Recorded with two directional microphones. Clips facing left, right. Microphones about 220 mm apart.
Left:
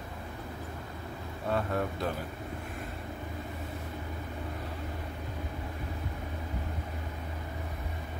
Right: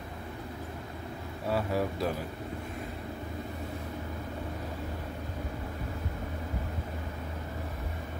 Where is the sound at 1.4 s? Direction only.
5° right (ahead or behind).